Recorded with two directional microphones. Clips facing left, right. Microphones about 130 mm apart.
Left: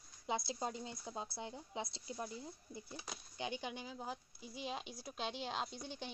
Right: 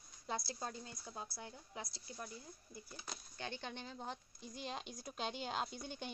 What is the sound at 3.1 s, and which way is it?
Speech, 15° left (ahead or behind).